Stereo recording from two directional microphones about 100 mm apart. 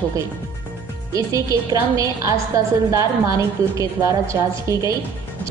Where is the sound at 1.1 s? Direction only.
35° right (ahead or behind).